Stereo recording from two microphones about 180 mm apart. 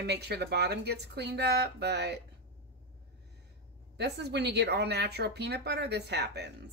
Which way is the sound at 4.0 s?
70° right (ahead or behind).